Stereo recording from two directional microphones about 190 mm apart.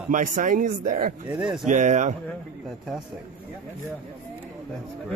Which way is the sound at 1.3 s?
5° right (ahead or behind).